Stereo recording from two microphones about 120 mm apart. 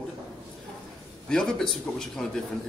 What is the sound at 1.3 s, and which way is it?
A man's voice, 5° left (ahead or behind).